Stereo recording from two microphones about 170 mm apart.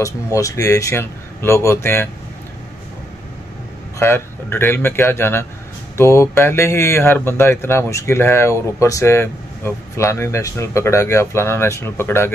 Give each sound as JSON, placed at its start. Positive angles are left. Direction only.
{"t": 0.0, "sound": "speech", "side_deg": 20}
{"t": 4.0, "sound": "speech", "side_deg": 15}